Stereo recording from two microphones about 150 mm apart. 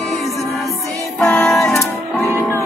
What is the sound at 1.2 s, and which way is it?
Music, 5° left (ahead or behind).